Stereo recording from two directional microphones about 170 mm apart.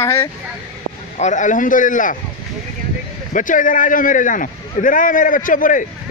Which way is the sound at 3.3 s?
50° left (ahead or behind).